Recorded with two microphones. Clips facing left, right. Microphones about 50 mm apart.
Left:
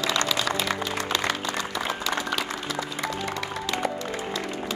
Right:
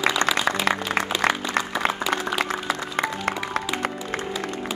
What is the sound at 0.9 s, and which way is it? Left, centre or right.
Applause, right.